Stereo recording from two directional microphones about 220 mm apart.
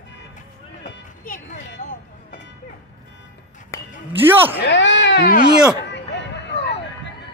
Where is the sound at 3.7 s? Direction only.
15° left (ahead or behind).